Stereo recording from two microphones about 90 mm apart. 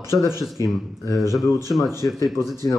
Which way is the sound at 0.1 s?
40° right (ahead or behind).